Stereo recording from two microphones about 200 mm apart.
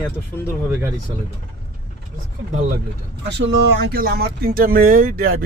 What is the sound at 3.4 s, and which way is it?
Speech, 55° right (ahead or behind).